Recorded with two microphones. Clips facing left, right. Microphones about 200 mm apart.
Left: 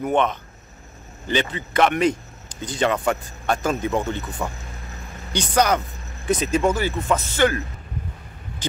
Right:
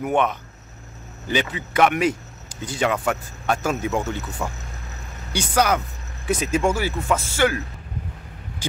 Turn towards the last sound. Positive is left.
turn(degrees=-10)  # may be behind; listen again after turning